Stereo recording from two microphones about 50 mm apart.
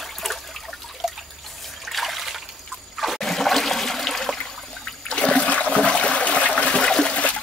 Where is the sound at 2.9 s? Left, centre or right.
Centre.